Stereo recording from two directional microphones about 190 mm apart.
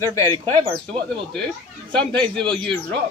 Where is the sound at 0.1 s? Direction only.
15° left (ahead or behind).